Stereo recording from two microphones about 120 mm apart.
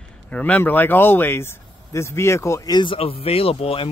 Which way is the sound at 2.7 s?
45° left (ahead or behind).